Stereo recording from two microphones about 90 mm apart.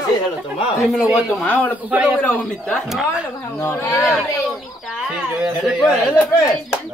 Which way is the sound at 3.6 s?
35° left (ahead or behind).